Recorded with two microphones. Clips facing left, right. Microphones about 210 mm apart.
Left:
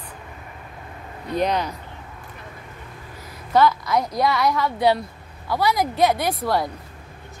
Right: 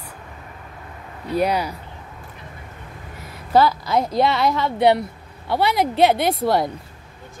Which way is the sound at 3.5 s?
30° right (ahead or behind).